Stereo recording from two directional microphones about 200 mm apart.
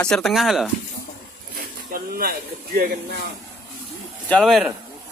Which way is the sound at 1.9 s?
45° right (ahead or behind).